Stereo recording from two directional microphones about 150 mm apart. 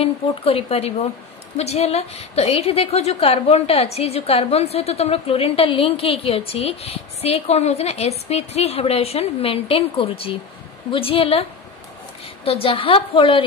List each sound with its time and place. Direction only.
0.0 s a woman's voice: 40° left (ahead or behind)
12.4 s a woman's voice: 40° left (ahead or behind)